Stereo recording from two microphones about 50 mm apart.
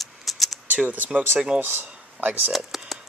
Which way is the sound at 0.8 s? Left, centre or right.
Right.